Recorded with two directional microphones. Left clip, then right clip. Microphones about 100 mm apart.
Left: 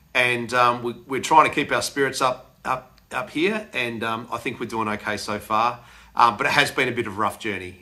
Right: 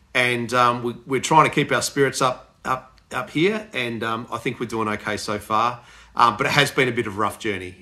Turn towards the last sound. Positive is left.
turn(degrees=35)  # may be behind; listen again after turning